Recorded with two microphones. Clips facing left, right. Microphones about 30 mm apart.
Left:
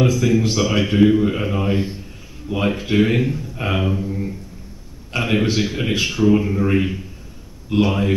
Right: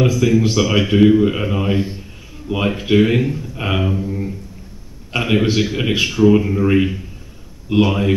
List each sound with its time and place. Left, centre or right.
0.0 s speech: centre
2.4 s speech: centre
2.7 s a man's voice: centre